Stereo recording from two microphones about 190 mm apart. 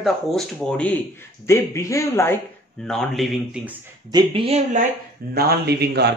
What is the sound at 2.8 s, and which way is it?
Speech, 5° left (ahead or behind).